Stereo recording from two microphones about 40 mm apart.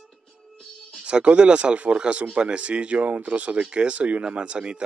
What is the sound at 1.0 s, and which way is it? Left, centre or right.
Speech, right.